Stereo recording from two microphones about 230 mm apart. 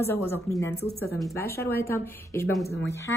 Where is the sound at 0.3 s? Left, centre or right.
Centre.